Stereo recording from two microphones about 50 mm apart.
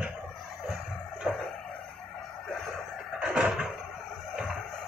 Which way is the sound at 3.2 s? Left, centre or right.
Centre.